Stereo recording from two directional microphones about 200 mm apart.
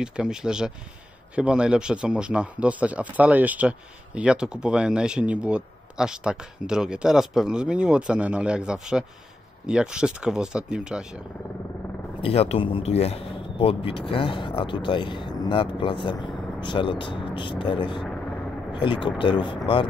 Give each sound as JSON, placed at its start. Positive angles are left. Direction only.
{"t": 0.0, "sound": "speech", "side_deg": -5}
{"t": 12.2, "sound": "speech", "side_deg": 30}